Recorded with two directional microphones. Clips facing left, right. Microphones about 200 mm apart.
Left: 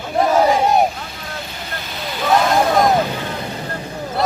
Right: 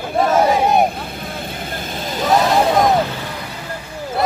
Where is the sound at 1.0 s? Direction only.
55° right (ahead or behind).